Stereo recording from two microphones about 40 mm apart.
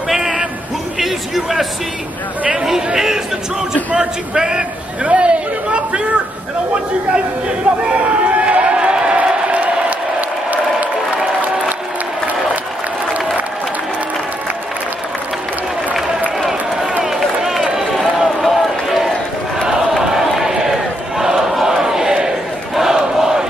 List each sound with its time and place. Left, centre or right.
0.1 s a sound: centre
2.5 s a man's voice: centre
5.0 s a sound: right
7.9 s crowd: right
17.0 s run: centre
20.0 s crowd: centre